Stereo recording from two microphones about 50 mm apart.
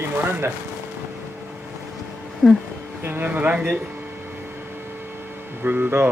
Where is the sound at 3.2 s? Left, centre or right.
Right.